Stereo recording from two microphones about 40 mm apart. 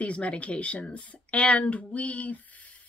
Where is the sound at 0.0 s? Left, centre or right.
Left.